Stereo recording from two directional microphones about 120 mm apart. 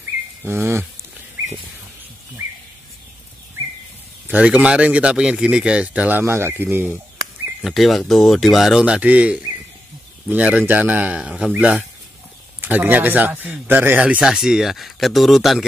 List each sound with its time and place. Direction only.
0.4 s a sound: 20° right (ahead or behind)
4.3 s a man's voice: 10° right (ahead or behind)
7.6 s a man's voice: centre (ahead or behind)